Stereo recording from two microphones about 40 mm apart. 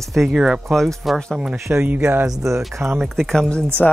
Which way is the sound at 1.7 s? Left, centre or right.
Right.